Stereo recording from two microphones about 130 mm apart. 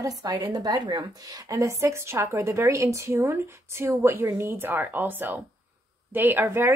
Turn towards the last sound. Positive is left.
turn(degrees=-15)  # may be behind; listen again after turning